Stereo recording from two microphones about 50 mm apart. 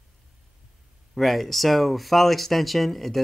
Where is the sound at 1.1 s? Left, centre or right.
Centre.